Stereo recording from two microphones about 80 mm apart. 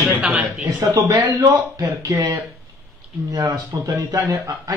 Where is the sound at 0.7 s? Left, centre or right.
Right.